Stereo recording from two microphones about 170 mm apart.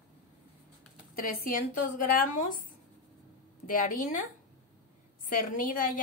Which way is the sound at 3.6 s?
55° left (ahead or behind).